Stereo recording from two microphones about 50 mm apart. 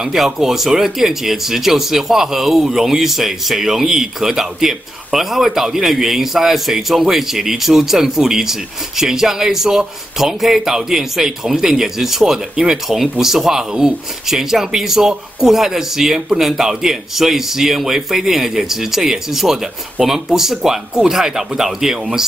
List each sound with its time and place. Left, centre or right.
0.0 s speech: centre